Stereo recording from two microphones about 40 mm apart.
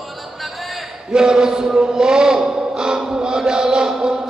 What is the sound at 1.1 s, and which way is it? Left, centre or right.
Chant, centre.